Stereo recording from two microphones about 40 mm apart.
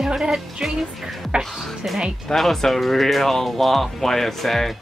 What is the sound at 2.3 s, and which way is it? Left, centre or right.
Speech, centre.